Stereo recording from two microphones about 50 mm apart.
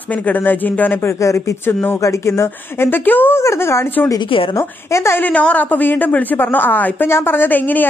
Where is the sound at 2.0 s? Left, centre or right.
Left.